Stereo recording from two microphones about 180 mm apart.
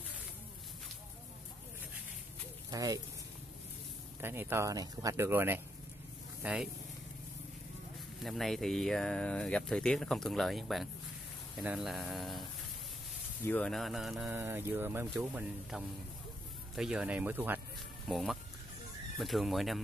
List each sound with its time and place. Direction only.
2.7 s speech: 20° right (ahead or behind)
4.2 s speech: 10° right (ahead or behind)
8.2 s speech: centre (ahead or behind)
14.2 s speech: 10° right (ahead or behind)